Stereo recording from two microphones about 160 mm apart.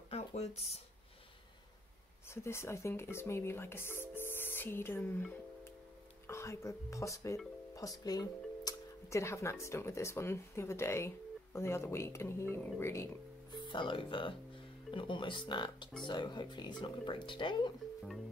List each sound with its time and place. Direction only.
0.1 s a sound: 40° left (ahead or behind)
2.2 s speech: 15° left (ahead or behind)
13.7 s speech: 30° left (ahead or behind)